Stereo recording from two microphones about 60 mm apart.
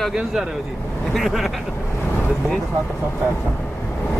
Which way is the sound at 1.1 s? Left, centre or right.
Centre.